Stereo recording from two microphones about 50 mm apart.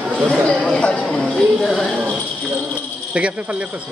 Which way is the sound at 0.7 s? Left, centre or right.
Left.